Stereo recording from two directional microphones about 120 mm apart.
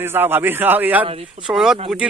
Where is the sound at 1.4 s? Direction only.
5° right (ahead or behind).